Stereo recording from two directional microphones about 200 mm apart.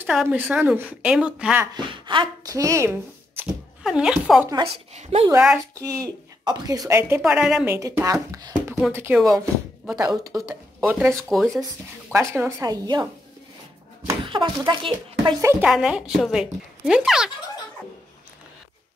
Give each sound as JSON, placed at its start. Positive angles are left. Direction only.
{"t": 0.0, "sound": "a woman's voice", "side_deg": -5}
{"t": 1.7, "sound": "speech", "side_deg": -25}
{"t": 4.9, "sound": "speech", "side_deg": -30}
{"t": 5.8, "sound": "a woman's voice", "side_deg": -15}
{"t": 7.7, "sound": "a woman's voice", "side_deg": -15}
{"t": 11.2, "sound": "a woman's voice", "side_deg": 0}
{"t": 12.1, "sound": "a woman's voice", "side_deg": -15}
{"t": 15.4, "sound": "a woman's voice", "side_deg": -5}